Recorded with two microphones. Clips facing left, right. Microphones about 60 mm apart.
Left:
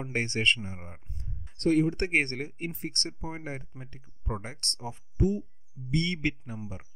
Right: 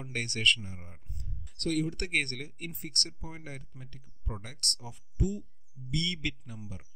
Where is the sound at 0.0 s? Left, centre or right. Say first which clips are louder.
Left 2 dB; left.